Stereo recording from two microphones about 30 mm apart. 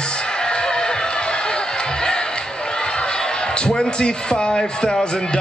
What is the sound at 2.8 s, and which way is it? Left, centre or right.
Crowd, left.